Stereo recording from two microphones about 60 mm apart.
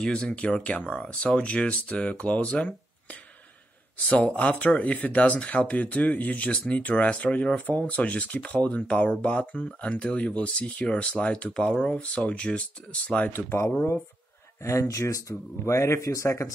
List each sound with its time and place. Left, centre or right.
0.0 s speech: centre
13.3 s speech: left
14.6 s speech: left